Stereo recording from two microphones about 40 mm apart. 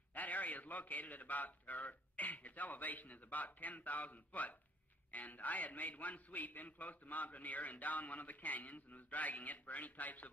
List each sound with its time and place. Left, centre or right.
0.1 s a man's voice: left